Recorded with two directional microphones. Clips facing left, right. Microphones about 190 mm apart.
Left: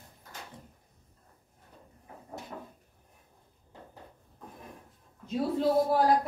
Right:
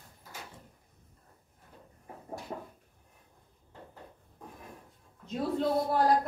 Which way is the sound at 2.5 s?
30° right (ahead or behind).